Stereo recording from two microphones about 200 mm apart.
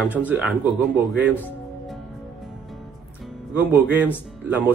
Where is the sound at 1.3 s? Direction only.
10° left (ahead or behind).